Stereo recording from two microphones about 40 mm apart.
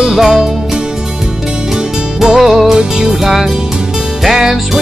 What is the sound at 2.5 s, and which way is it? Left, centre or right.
Music, centre.